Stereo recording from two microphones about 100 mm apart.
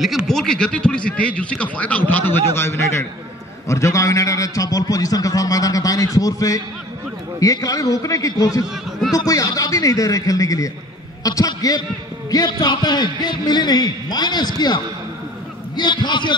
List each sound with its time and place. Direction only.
0.0 s a man's voice: centre (ahead or behind); by 16.3 s 50° left (ahead or behind)